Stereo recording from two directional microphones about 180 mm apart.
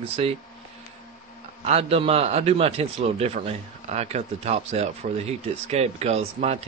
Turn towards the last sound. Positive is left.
turn(degrees=-35)  # may be behind; listen again after turning